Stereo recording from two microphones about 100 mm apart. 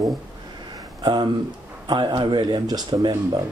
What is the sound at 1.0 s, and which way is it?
Speech, 45° right (ahead or behind).